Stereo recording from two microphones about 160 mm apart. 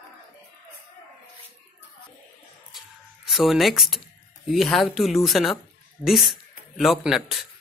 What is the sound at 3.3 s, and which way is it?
Speech, centre (ahead or behind).